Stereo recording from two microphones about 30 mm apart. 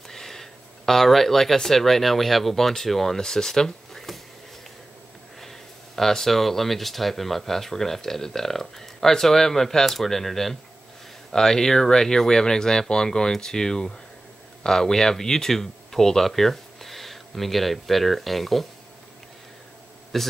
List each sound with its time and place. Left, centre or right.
0.1 s speech: centre
3.2 s speech: centre
5.4 s speech: centre
20.1 s a man's voice: centre